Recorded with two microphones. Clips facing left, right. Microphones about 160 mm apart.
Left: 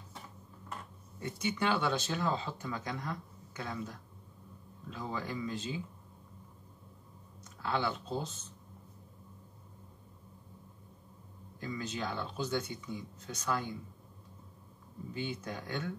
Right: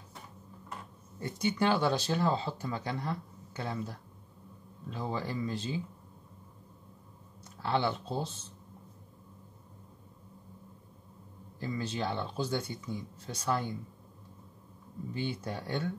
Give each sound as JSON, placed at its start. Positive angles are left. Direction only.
{"t": 1.2, "sound": "speech", "side_deg": -35}
{"t": 7.4, "sound": "speech", "side_deg": -30}
{"t": 11.6, "sound": "speech", "side_deg": -30}
{"t": 15.1, "sound": "speech", "side_deg": -30}